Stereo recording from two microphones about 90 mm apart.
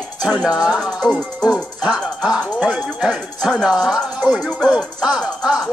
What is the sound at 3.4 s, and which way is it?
Speech, 5° left (ahead or behind).